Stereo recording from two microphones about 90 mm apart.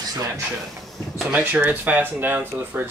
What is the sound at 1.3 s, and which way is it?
Speech, 20° right (ahead or behind).